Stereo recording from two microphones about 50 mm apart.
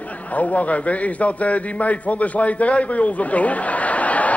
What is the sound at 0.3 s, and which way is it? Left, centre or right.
A man's voice, left.